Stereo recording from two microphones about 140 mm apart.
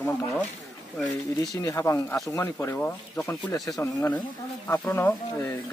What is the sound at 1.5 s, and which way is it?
Speech, 25° left (ahead or behind).